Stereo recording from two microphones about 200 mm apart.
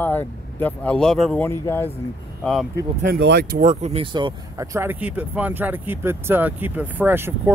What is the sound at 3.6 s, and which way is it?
Speech, 35° right (ahead or behind).